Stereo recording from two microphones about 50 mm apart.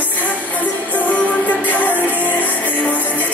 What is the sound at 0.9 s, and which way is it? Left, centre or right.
Music, left.